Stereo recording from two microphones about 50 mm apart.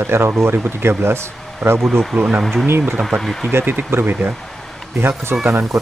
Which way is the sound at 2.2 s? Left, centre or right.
Centre.